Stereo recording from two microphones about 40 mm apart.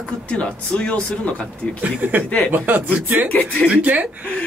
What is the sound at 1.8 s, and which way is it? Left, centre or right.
Speech, right.